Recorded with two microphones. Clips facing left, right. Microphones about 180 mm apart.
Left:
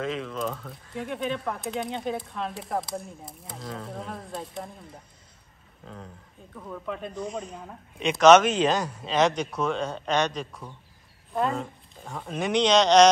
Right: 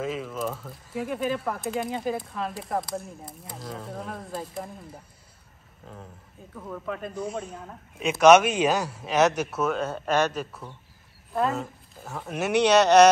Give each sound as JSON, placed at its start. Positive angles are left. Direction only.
{"t": 0.0, "sound": "speech", "side_deg": -5}
{"t": 6.5, "sound": "speech", "side_deg": 0}